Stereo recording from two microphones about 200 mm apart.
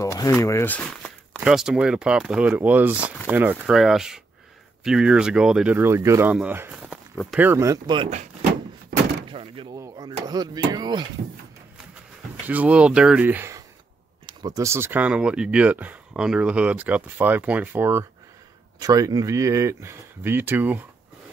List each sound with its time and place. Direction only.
0.0 s speech: 15° left (ahead or behind); by 8.1 s 20° right (ahead or behind)
8.1 s door: 40° right (ahead or behind)
8.9 s door: 50° right (ahead or behind)
9.3 s door: 25° right (ahead or behind)
9.8 s speech: 20° right (ahead or behind)
12.4 s speech: 5° right (ahead or behind)